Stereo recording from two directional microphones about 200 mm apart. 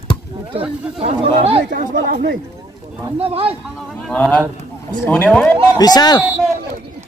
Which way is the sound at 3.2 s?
30° right (ahead or behind).